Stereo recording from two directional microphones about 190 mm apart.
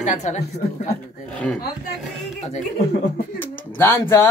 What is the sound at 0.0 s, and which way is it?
Speech, 40° left (ahead or behind).